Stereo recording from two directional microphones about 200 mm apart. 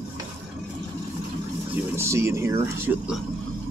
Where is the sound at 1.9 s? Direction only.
15° right (ahead or behind).